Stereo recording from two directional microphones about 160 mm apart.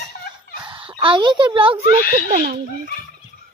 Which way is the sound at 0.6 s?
35° right (ahead or behind).